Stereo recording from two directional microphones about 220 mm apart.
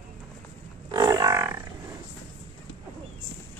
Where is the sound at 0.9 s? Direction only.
15° right (ahead or behind).